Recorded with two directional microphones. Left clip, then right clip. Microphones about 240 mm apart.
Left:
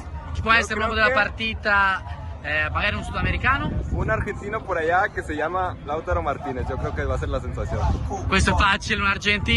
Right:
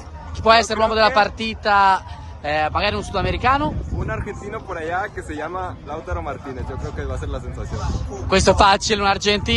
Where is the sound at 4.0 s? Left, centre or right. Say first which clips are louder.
Left 4 dB; centre.